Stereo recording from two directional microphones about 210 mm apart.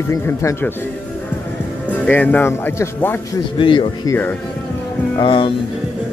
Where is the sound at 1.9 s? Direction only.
10° left (ahead or behind).